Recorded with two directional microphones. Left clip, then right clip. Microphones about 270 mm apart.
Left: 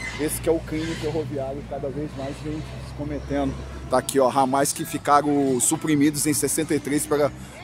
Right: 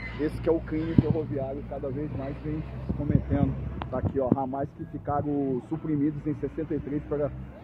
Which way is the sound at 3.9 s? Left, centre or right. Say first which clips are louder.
Left 9 dB; left.